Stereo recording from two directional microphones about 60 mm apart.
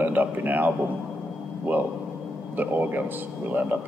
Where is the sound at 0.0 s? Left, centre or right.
Right.